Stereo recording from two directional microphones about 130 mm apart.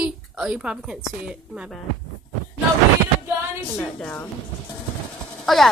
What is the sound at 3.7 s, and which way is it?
Speech, 15° left (ahead or behind).